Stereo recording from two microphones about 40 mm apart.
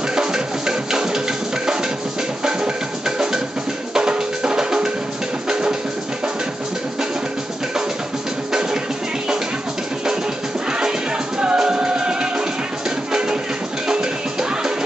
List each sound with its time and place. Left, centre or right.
0.1 s music: centre
3.9 s drum: right
5.5 s music: right
8.5 s music: centre
10.7 s music: centre